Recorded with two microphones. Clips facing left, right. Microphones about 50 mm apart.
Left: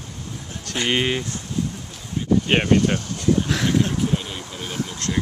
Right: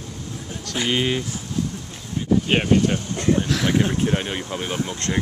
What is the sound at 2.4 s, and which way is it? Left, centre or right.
Speech, centre.